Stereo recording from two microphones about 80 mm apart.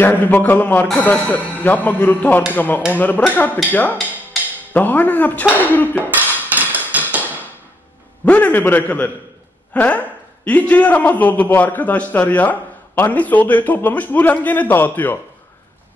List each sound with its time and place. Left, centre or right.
0.0 s a man's voice: left
6.5 s hammer: right
8.3 s a man's voice: left